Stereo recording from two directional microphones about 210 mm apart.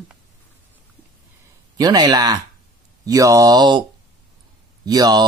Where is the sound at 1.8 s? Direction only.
20° right (ahead or behind).